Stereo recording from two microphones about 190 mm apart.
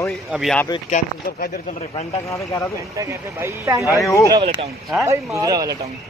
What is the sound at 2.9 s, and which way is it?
Speech, 15° right (ahead or behind).